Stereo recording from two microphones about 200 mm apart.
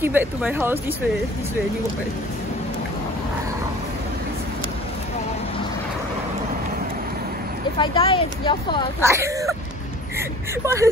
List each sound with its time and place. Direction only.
0.0 s speech: 10° right (ahead or behind)
7.7 s speech: 25° left (ahead or behind)
9.0 s speech: 15° right (ahead or behind)